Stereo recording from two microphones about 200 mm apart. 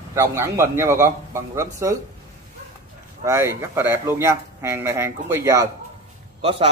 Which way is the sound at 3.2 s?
15° right (ahead or behind).